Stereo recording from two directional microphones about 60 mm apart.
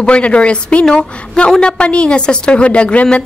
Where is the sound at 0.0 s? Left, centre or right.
Centre.